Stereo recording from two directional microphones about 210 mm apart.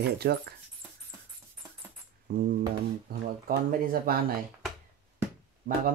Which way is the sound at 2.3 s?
50° right (ahead or behind).